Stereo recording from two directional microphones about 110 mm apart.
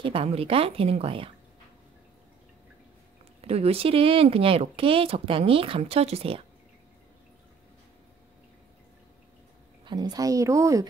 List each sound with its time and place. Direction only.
0.0 s speech: 55° right (ahead or behind)
3.3 s speech: 70° right (ahead or behind)
9.8 s a woman's voice: 40° right (ahead or behind)